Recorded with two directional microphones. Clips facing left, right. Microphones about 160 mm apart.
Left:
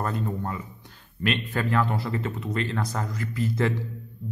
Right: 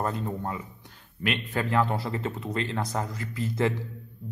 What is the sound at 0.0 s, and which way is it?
Speech, 20° right (ahead or behind).